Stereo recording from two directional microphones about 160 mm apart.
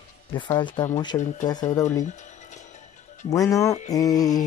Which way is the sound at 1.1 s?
25° left (ahead or behind).